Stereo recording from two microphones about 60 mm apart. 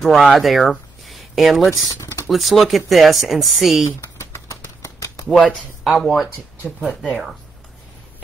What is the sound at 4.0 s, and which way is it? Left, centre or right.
Typing, left.